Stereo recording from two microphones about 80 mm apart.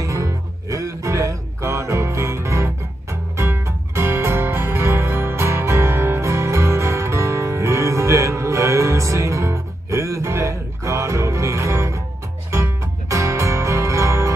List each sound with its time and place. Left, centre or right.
0.0 s music: right